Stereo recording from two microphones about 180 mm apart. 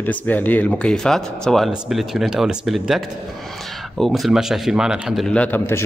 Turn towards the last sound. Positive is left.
turn(degrees=10)  # may be behind; listen again after turning